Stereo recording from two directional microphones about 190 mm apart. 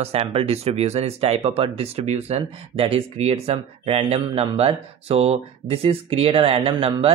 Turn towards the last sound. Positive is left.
turn(degrees=-30)  # may be behind; listen again after turning